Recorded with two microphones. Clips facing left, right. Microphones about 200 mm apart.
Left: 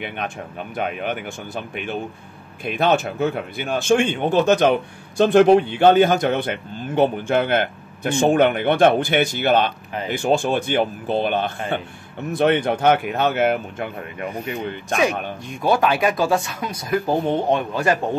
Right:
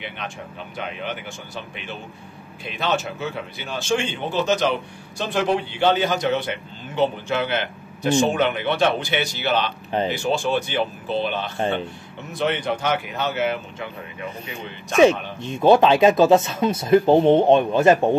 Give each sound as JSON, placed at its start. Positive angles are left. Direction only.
{"t": 0.7, "sound": "speech", "side_deg": 55}
{"t": 15.0, "sound": "speech", "side_deg": -25}